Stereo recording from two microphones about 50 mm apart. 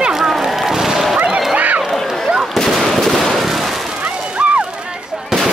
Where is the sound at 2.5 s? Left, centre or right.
Centre.